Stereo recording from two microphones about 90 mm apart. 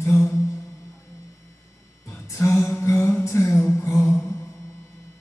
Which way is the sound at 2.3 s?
30° left (ahead or behind).